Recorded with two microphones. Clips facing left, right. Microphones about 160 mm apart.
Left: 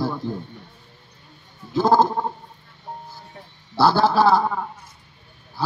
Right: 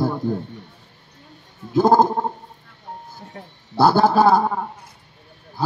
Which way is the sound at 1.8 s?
20° right (ahead or behind).